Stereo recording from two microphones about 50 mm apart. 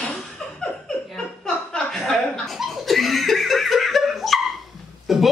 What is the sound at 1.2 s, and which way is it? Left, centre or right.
Laughter, centre.